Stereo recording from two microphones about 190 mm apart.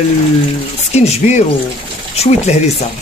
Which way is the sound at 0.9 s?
35° left (ahead or behind).